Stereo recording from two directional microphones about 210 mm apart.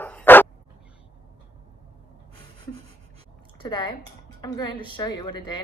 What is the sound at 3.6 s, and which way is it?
A woman's voice, 20° left (ahead or behind).